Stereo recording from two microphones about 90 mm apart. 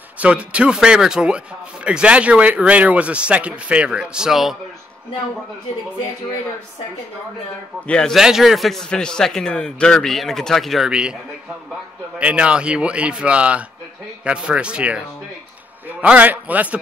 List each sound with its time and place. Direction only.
0.2 s speech: 15° right (ahead or behind)
7.8 s a man's voice: 10° left (ahead or behind)
8.1 s a man's voice: 5° right (ahead or behind)
12.2 s speech: 15° right (ahead or behind)